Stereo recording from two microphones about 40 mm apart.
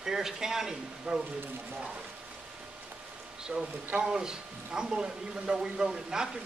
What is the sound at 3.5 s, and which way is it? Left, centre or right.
Speech, right.